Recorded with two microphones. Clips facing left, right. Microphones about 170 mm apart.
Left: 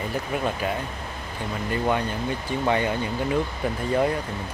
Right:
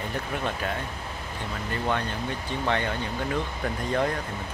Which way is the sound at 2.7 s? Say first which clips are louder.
Left 4 dB; 10° left (ahead or behind).